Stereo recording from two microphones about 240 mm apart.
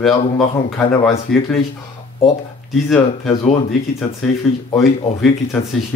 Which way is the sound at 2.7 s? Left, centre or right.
Centre.